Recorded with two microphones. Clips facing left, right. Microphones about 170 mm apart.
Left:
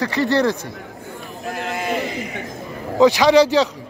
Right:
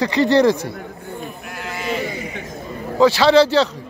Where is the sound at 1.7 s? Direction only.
50° left (ahead or behind).